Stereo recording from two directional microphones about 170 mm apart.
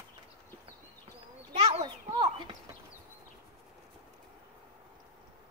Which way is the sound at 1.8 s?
25° right (ahead or behind).